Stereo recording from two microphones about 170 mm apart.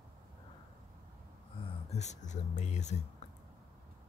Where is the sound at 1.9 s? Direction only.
40° left (ahead or behind).